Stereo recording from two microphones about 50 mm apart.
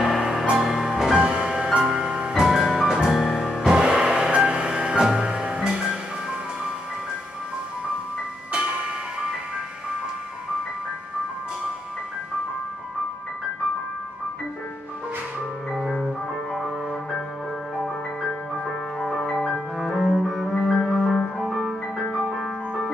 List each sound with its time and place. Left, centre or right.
0.0 s music: centre
2.3 s music: centre
8.5 s music: centre
18.7 s music: centre
19.4 s cello: centre
20.9 s music: centre